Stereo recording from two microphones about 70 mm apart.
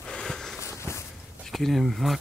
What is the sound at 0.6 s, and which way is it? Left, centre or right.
Walk, left.